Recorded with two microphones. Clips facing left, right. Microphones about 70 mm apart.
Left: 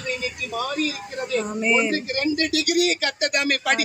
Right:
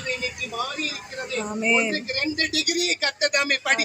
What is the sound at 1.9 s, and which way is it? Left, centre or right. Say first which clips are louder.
Speech: left 3 dB; right.